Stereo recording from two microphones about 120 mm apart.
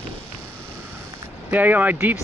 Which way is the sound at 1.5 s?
15° right (ahead or behind).